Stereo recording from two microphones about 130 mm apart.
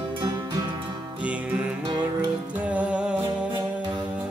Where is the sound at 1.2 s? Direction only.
10° right (ahead or behind).